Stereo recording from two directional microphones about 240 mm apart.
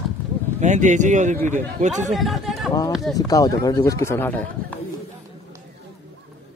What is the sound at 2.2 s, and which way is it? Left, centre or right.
Speech, centre.